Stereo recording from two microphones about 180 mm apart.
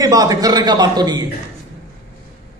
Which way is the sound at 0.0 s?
20° right (ahead or behind).